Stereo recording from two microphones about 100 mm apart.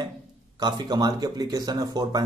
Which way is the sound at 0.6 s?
45° right (ahead or behind).